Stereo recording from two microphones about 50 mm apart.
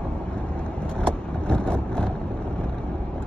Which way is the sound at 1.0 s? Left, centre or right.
Centre.